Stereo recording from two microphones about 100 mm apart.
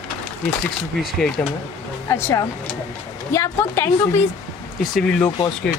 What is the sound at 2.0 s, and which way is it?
Speech, 25° left (ahead or behind).